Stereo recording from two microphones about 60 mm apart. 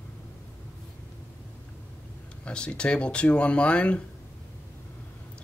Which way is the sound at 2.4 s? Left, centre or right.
Centre.